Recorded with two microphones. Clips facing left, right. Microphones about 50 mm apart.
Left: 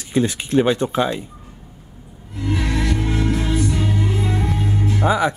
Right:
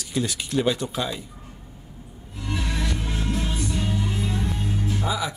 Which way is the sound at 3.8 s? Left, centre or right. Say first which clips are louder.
Left 5 dB; left.